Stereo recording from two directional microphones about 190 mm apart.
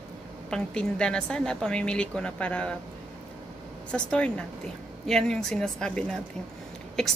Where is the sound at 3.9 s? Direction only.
5° left (ahead or behind).